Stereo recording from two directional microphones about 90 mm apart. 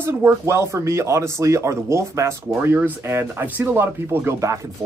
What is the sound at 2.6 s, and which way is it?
Speech, 20° right (ahead or behind).